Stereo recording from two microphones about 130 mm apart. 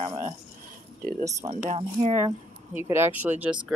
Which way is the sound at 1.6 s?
55° right (ahead or behind).